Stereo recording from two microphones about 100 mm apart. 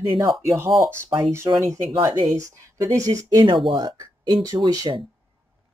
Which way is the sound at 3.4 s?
55° right (ahead or behind).